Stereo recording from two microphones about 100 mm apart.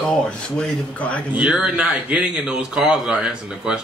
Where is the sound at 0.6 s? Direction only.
10° left (ahead or behind).